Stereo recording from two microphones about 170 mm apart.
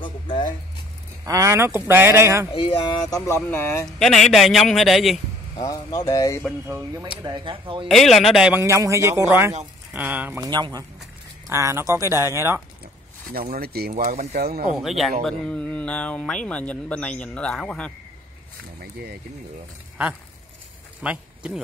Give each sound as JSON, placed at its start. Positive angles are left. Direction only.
{"t": 0.0, "sound": "music", "side_deg": 30}
{"t": 1.2, "sound": "speech", "side_deg": -20}
{"t": 2.5, "sound": "speech", "side_deg": 30}
{"t": 3.3, "sound": "a man's voice", "side_deg": 15}
{"t": 3.8, "sound": "a man's voice", "side_deg": 0}
{"t": 5.6, "sound": "speech", "side_deg": 20}
{"t": 7.2, "sound": "speech", "side_deg": -25}
{"t": 7.9, "sound": "speech", "side_deg": 0}
{"t": 10.4, "sound": "speech", "side_deg": -25}
{"t": 13.3, "sound": "speech", "side_deg": -65}
{"t": 14.8, "sound": "a man's voice", "side_deg": 0}
{"t": 21.0, "sound": "speech", "side_deg": -5}